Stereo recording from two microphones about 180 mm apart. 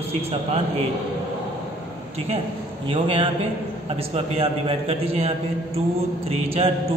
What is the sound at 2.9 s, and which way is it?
A man's voice, 30° right (ahead or behind).